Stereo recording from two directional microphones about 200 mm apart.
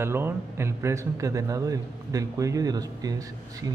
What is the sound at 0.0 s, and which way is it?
A man's voice, 10° right (ahead or behind).